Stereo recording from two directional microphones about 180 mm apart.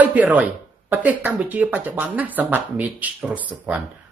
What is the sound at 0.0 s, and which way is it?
Speech, 10° right (ahead or behind).